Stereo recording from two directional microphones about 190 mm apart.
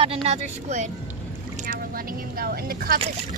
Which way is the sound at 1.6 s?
50° right (ahead or behind).